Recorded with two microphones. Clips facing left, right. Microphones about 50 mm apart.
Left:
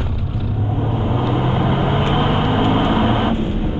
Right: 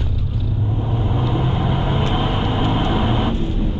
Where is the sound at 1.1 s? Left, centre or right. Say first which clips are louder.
Left 3 dB; left.